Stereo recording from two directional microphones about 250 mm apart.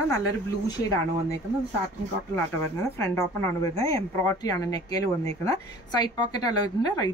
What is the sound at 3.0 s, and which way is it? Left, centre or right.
A woman's voice, centre.